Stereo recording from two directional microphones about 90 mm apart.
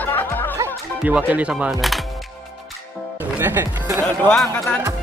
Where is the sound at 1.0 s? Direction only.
15° right (ahead or behind).